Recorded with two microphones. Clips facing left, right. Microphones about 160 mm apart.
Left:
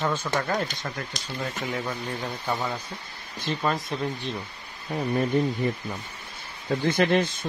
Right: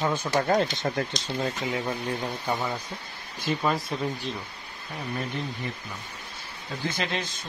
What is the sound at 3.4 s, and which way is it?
Speech, 5° right (ahead or behind).